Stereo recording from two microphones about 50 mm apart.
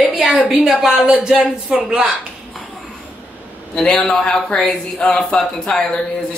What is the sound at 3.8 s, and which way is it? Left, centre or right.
Speech, centre.